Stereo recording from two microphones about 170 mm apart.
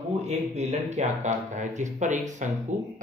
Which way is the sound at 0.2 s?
40° right (ahead or behind).